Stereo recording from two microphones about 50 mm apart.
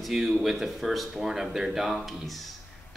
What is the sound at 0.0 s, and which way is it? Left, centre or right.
Speech, centre.